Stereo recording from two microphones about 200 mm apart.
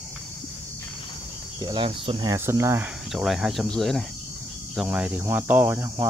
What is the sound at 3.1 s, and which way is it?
Speech, centre (ahead or behind).